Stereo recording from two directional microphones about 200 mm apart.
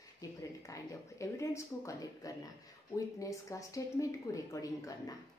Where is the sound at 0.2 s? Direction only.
15° left (ahead or behind).